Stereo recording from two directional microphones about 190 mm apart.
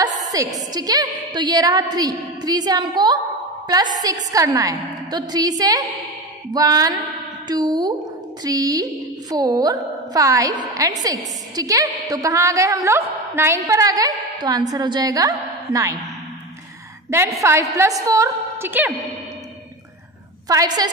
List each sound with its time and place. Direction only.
0.0 s a woman's voice: 20° right (ahead or behind)
17.4 s a woman's voice: 15° right (ahead or behind)
20.4 s a woman's voice: 20° right (ahead or behind)